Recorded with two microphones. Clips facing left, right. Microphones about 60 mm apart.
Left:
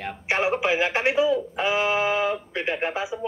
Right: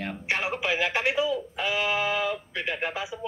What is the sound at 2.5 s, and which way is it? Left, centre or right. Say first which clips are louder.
Speech: left 4 dB; left.